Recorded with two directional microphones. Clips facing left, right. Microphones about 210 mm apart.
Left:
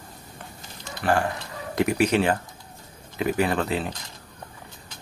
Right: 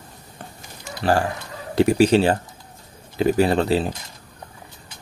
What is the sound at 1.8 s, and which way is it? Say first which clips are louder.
Speech: right 6 dB; 30° right (ahead or behind).